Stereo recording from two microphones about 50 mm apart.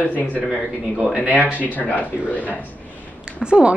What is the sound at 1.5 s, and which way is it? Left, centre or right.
Speech, left.